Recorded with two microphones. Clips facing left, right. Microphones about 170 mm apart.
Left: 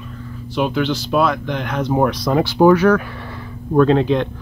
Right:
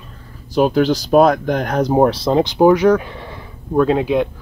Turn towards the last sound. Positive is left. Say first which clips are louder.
# left 1 dB
turn(degrees=-10)  # may be behind; listen again after turning